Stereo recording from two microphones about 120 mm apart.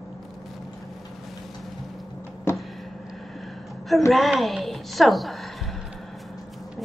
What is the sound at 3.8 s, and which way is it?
A woman's voice, centre (ahead or behind).